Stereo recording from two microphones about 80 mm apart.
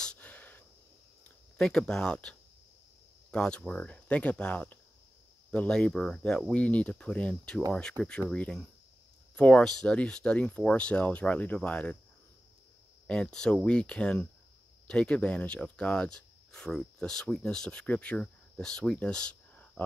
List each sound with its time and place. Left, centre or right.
0.0 s breathing: centre
1.6 s speech: centre
13.0 s speech: centre